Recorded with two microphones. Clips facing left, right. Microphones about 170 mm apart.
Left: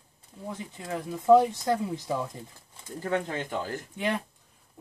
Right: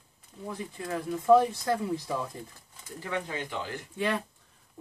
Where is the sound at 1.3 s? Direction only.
20° left (ahead or behind).